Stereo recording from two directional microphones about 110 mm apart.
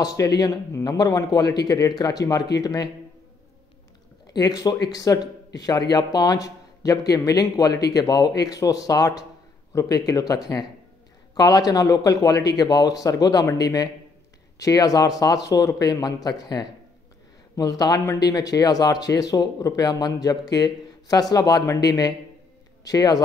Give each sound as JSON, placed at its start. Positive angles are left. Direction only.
{"t": 0.0, "sound": "speech", "side_deg": 35}
{"t": 4.4, "sound": "speech", "side_deg": 35}